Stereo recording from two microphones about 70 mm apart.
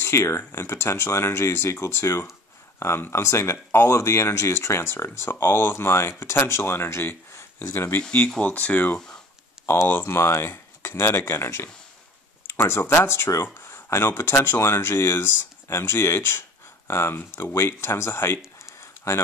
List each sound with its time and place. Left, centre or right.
0.0 s speech: left
8.3 s speech: centre
8.9 s speech: centre
9.7 s speech: left
18.6 s a sound: left